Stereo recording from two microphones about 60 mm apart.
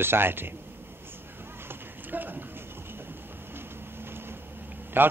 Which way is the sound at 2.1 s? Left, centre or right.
Right.